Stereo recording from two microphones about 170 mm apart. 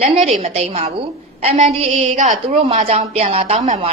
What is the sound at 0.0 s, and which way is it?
A woman's voice, 40° right (ahead or behind).